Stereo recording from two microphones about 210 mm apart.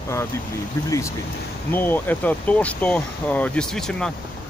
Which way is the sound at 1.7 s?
10° left (ahead or behind).